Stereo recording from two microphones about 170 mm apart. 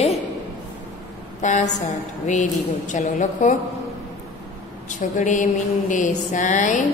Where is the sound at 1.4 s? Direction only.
45° left (ahead or behind).